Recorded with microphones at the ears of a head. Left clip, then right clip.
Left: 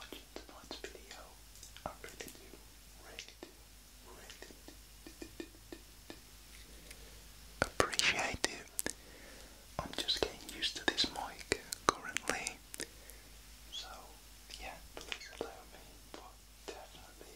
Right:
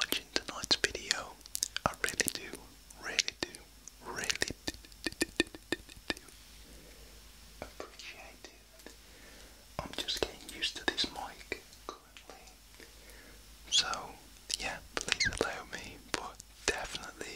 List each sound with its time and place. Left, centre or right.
0.0 s whispering: right
4.0 s a sound: right
7.5 s whispering: left
9.8 s whispering: centre
11.4 s whispering: left
13.7 s whispering: right